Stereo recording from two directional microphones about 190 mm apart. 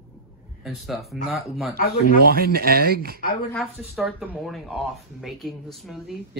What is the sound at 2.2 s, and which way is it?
Speech, 55° right (ahead or behind).